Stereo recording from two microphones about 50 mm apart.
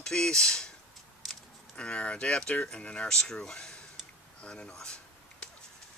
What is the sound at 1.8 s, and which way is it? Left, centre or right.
Speech, left.